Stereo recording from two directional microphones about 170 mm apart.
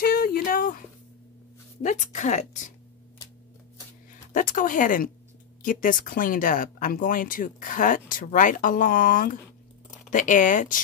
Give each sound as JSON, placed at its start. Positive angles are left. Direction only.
{"t": 0.0, "sound": "a sound", "side_deg": 60}
{"t": 1.8, "sound": "speech", "side_deg": 45}
{"t": 4.3, "sound": "speech", "side_deg": 50}